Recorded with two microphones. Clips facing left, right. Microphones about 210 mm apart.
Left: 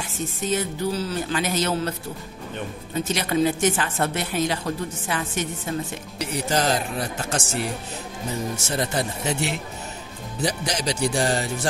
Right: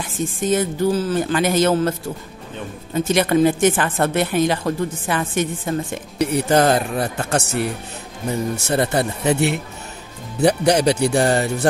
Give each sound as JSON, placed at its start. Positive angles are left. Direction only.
{"t": 0.2, "sound": "a man's voice", "side_deg": -50}
{"t": 3.1, "sound": "a man's voice", "side_deg": -55}